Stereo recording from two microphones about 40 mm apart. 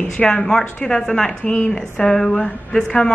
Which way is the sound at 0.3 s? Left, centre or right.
Centre.